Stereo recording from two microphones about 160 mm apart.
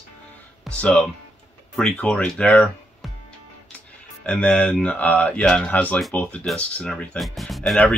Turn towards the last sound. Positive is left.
turn(degrees=0)  # may be behind; listen again after turning